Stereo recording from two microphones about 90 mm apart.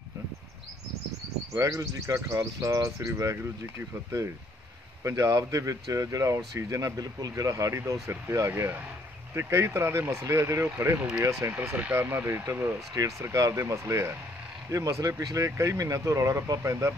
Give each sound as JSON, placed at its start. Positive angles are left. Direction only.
{"t": 1.5, "sound": "speech", "side_deg": -40}
{"t": 12.9, "sound": "speech", "side_deg": -35}